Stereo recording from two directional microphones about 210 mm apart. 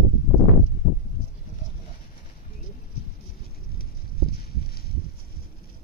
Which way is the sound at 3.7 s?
45° left (ahead or behind).